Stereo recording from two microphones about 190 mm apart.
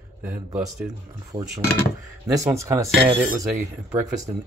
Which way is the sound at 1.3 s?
30° right (ahead or behind).